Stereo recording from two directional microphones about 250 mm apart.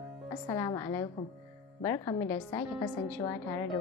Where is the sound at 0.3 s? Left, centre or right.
Centre.